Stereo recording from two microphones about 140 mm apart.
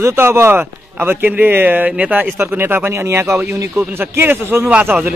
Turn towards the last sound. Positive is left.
turn(degrees=-10)  # may be behind; listen again after turning